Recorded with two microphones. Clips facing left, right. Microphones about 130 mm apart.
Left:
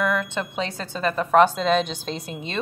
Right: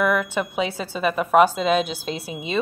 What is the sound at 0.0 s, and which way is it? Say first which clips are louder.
A woman's voice: right 3 dB; 10° right (ahead or behind).